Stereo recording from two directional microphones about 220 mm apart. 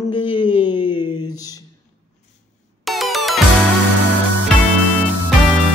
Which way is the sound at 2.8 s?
Centre (ahead or behind).